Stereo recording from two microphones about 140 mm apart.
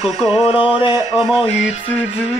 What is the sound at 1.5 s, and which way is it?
Speech, 50° left (ahead or behind).